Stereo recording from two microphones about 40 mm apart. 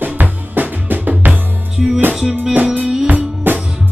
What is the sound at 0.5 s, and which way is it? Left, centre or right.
Drum, right.